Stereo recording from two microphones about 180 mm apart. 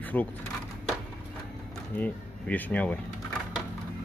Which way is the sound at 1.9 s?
10° left (ahead or behind).